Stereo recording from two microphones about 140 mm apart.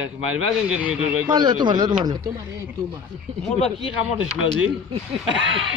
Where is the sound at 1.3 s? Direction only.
30° right (ahead or behind).